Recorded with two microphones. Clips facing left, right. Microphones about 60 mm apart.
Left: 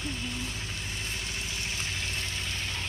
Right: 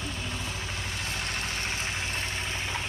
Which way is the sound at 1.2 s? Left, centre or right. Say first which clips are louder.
Right 4 dB; right.